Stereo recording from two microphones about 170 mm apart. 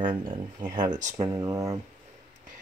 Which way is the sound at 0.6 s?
25° right (ahead or behind).